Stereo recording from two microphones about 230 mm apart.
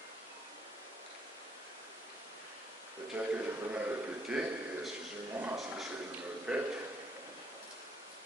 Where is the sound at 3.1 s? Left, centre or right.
Centre.